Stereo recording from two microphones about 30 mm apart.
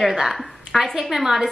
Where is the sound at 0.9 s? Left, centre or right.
Centre.